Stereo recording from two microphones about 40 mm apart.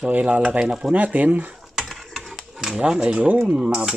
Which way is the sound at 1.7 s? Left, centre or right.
Centre.